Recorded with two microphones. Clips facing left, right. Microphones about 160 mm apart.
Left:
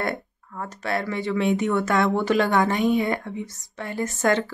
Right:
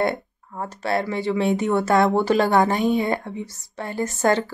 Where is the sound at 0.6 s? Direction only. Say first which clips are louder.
Right 3 dB; 30° right (ahead or behind).